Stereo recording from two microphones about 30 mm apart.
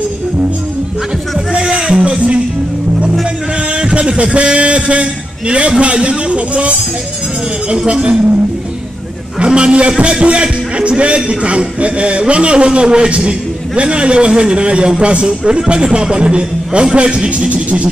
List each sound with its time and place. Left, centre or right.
1.6 s a sound: right
2.0 s music: right
3.7 s music: right
4.2 s speech: right
9.4 s speech: right